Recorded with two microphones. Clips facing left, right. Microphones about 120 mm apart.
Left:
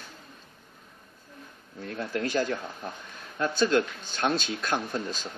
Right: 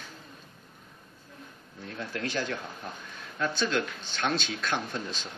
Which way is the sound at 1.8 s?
40° left (ahead or behind).